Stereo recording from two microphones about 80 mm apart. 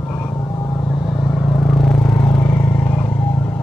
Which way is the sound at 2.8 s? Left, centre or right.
Left.